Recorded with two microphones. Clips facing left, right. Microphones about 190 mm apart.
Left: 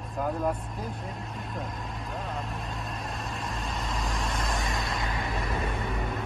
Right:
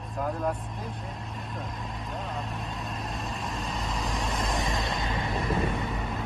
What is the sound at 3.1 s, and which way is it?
Vehicle, centre (ahead or behind).